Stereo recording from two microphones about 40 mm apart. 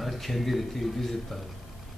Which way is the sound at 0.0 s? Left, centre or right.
Centre.